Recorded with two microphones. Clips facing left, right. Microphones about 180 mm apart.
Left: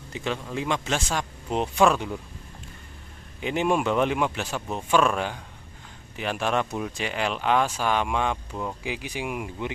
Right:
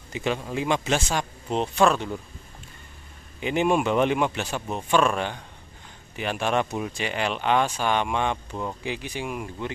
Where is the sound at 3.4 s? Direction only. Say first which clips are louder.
Right 2 dB; centre (ahead or behind).